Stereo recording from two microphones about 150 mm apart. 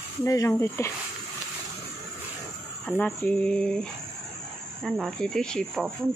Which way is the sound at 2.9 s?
Centre (ahead or behind).